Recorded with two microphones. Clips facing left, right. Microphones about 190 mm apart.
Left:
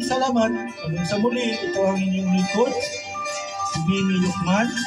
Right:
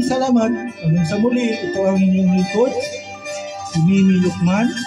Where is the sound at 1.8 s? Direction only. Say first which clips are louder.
Right 7 dB; 50° right (ahead or behind).